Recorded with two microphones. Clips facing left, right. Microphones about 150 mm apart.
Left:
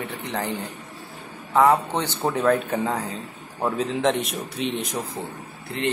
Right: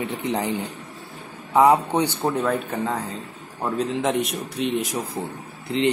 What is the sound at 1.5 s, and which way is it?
Speech, 15° right (ahead or behind).